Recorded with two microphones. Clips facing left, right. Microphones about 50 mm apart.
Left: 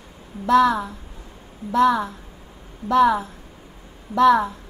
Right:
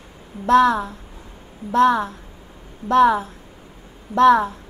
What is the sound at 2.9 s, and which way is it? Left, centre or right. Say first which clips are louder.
Speech: right 2 dB; right.